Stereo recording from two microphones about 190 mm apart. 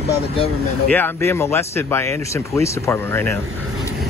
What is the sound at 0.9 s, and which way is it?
Speech, 10° left (ahead or behind).